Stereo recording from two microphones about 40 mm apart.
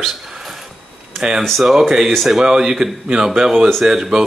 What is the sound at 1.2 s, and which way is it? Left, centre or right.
Speech, centre.